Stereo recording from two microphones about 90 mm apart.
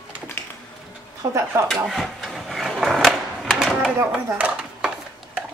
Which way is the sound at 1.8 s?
Centre (ahead or behind).